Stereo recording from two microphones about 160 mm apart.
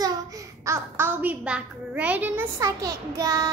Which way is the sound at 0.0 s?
20° right (ahead or behind).